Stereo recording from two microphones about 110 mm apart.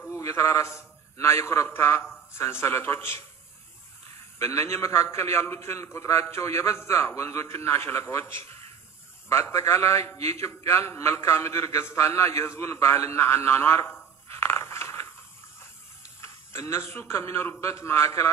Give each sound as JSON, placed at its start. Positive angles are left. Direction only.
{"t": 0.1, "sound": "a man's voice", "side_deg": 25}
{"t": 4.4, "sound": "a man's voice", "side_deg": 25}
{"t": 16.2, "sound": "a man's voice", "side_deg": 25}